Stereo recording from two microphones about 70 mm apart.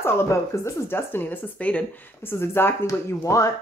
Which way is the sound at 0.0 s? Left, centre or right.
Left.